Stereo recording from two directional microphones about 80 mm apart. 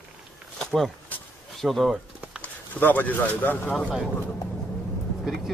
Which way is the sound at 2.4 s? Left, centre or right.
Left.